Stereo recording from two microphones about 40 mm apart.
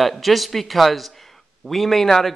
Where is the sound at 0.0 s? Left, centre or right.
Centre.